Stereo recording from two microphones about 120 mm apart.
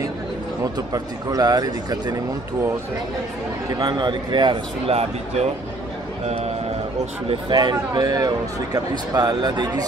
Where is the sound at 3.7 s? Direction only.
35° right (ahead or behind).